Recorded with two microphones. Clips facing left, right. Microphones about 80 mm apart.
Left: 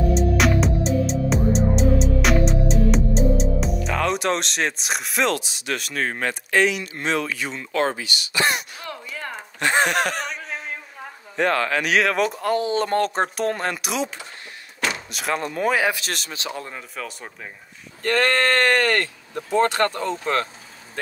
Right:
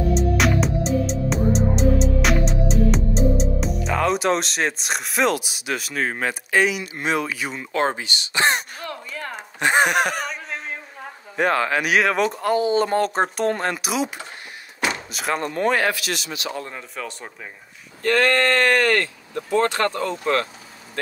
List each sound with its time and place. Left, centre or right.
0.1 s music: centre
7.7 s speech: right
9.3 s speech: centre
10.2 s a sound: centre
11.3 s speech: centre
16.0 s speech: left
16.6 s speech: centre
19.3 s speech: centre